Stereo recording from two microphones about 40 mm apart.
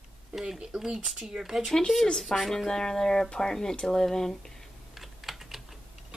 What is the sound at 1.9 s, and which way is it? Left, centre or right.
Speech, centre.